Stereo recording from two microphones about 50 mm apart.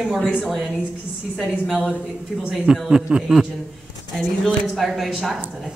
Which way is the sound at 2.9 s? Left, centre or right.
Centre.